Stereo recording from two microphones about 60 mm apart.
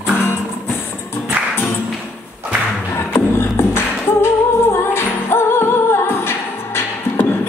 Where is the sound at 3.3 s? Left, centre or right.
Left.